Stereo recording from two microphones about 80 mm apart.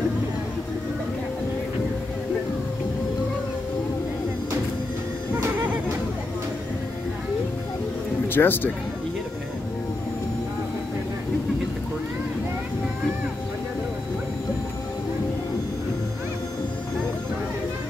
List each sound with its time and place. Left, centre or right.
8.3 s speech: left